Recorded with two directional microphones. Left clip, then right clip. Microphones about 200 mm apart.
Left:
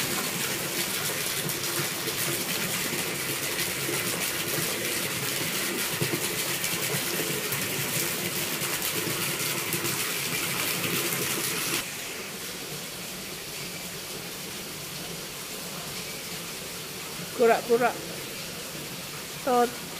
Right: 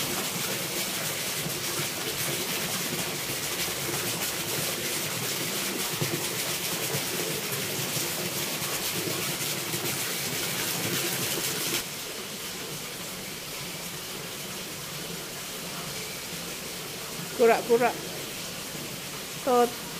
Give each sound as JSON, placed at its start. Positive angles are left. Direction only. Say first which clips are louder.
{"t": 17.4, "sound": "speech", "louder": "even", "side_deg": 0}
{"t": 19.5, "sound": "speech", "louder": "right 1 dB", "side_deg": 0}